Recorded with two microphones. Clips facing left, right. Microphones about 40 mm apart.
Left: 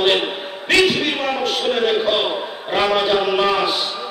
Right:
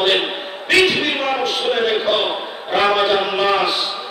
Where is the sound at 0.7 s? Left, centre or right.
Centre.